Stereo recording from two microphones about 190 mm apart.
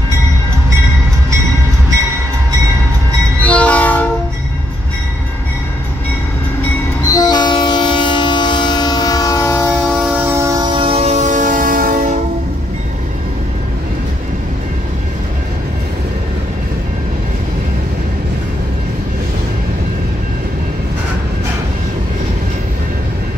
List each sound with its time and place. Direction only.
3.4 s train: 5° left (ahead or behind)
7.1 s train: 20° left (ahead or behind)
9.8 s train: 5° right (ahead or behind); by 12.2 s 45° right (ahead or behind)